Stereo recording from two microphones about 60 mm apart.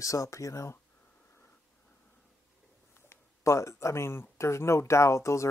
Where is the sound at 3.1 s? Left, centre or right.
Left.